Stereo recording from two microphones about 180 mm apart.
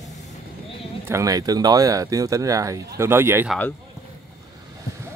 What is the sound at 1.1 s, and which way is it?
Speech, 20° right (ahead or behind).